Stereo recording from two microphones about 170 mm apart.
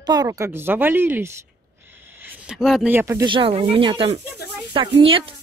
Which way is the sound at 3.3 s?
30° right (ahead or behind).